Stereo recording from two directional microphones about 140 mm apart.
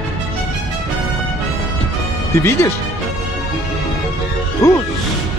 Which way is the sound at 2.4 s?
20° left (ahead or behind).